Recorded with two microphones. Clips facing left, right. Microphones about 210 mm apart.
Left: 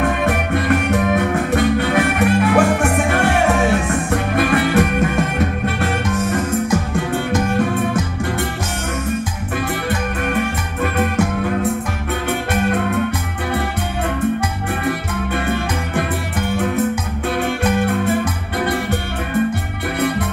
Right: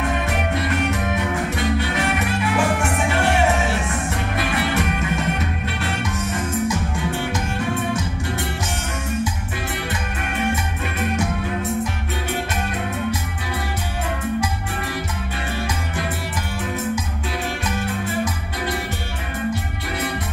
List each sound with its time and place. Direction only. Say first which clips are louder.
0.0 s music: left 5 dB; 55° left (ahead or behind)
10.8 s music: left 6 dB; 55° left (ahead or behind)
14.4 s music: left 5 dB; 55° left (ahead or behind)